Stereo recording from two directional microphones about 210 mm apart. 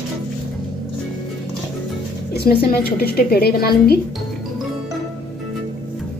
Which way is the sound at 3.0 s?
45° left (ahead or behind).